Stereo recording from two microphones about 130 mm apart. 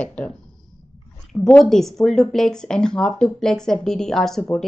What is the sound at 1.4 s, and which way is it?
Speech, 5° left (ahead or behind).